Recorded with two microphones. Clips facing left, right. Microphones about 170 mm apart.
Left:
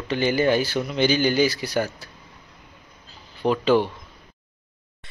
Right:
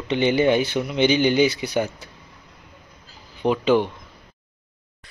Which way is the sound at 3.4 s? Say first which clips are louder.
Right 1 dB; 15° right (ahead or behind).